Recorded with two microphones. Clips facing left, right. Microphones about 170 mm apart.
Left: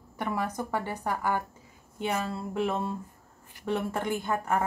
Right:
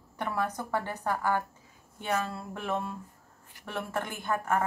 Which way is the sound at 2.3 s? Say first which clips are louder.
Left 4 dB; 25° left (ahead or behind).